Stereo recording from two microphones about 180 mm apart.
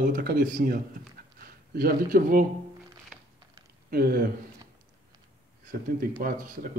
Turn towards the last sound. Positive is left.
turn(degrees=-50)  # may be behind; listen again after turning